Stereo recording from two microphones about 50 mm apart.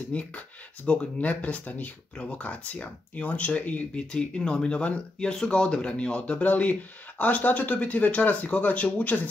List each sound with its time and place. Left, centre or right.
0.1 s speech: left
4.1 s speech: centre; by 9.3 s left